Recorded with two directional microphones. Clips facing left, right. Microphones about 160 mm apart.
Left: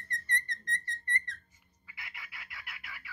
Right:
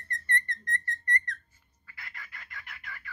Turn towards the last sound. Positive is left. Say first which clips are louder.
# right 3 dB
turn(degrees=10)  # may be behind; listen again after turning